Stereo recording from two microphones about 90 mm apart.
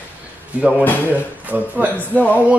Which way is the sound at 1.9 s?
15° left (ahead or behind).